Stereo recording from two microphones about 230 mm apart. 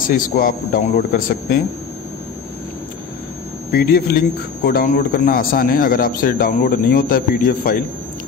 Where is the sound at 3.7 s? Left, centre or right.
Left.